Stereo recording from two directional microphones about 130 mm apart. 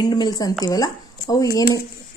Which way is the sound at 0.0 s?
35° left (ahead or behind).